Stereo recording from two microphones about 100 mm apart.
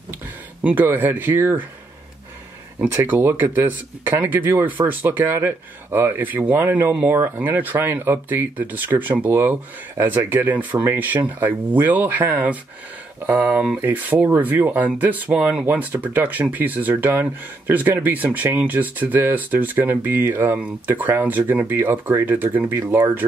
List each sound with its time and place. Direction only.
0.7 s speech: 20° right (ahead or behind)
2.9 s speech: 20° right (ahead or behind)